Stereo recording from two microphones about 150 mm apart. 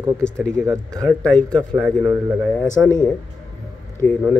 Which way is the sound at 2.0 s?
20° right (ahead or behind).